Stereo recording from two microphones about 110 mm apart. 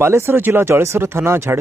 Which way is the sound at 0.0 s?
25° right (ahead or behind).